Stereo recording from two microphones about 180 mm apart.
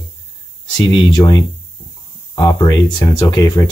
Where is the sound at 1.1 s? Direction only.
25° left (ahead or behind).